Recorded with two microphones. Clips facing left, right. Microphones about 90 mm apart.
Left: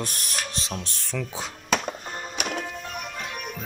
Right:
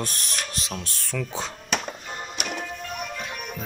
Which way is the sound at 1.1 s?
10° left (ahead or behind).